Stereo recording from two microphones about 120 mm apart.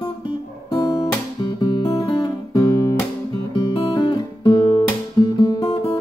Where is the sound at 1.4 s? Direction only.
35° left (ahead or behind).